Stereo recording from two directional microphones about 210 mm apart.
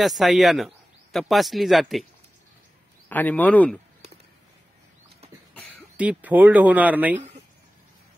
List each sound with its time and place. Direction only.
0.0 s speech: centre (ahead or behind)
3.1 s speech: 10° left (ahead or behind)
5.9 s speech: 5° right (ahead or behind)
7.2 s a sound: 30° right (ahead or behind)